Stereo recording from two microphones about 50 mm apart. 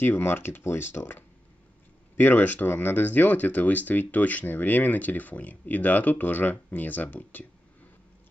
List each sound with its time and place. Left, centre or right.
0.0 s speech: left